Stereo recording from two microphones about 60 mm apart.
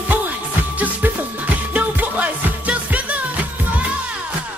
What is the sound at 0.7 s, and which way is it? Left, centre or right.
Music, right.